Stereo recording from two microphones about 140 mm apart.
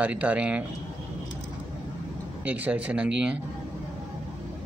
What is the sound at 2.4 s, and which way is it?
Speech, 10° right (ahead or behind).